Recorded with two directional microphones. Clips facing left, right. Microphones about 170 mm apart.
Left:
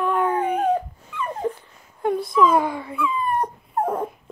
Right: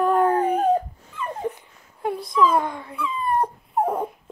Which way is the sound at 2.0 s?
Centre (ahead or behind).